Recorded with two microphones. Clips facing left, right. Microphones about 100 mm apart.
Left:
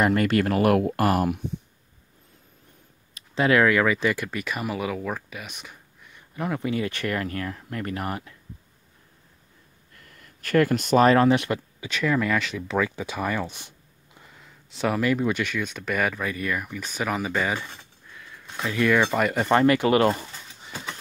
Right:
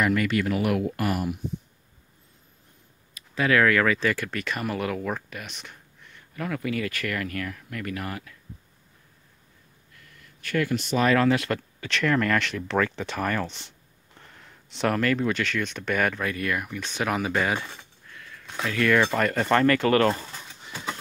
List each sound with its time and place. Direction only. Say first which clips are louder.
0.0 s speech: left 3 dB; 35° left (ahead or behind); by 1.4 s 55° left (ahead or behind)
3.2 s speech: left 2 dB; 25° left (ahead or behind); by 6.2 s 10° left (ahead or behind)
6.3 s speech: left 2 dB; 25° left (ahead or behind)
9.9 s a sound: left 2 dB; 45° left (ahead or behind)
11.1 s speech: left 3 dB; 25° left (ahead or behind); by 17.6 s centre (ahead or behind)
18.0 s a sound: even; 10° left (ahead or behind)
18.6 s speech: left 1 dB; 15° left (ahead or behind)